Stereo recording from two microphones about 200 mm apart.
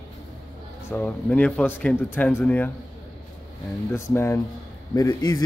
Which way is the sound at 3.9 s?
10° left (ahead or behind).